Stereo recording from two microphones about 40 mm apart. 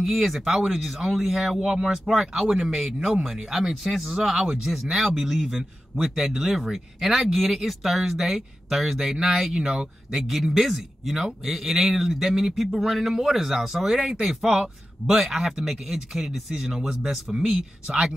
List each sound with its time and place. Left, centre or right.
0.0 s speech: centre
10.1 s speech: centre